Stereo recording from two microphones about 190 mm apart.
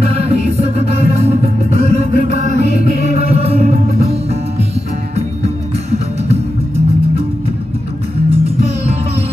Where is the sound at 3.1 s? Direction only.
35° right (ahead or behind).